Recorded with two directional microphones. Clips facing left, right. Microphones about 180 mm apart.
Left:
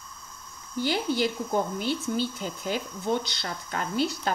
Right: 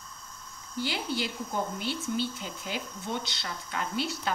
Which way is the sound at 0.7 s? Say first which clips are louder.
Left 6 dB; 45° left (ahead or behind).